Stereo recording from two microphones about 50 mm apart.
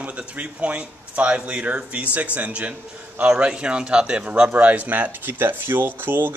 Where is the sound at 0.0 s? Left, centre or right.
Right.